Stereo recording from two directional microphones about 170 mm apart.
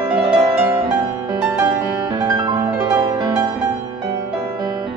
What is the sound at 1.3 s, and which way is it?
Music, 20° right (ahead or behind).